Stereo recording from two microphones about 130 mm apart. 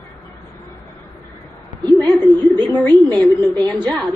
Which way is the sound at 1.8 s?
25° right (ahead or behind).